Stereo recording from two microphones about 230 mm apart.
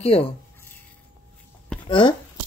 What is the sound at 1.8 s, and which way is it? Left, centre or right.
Speech, left.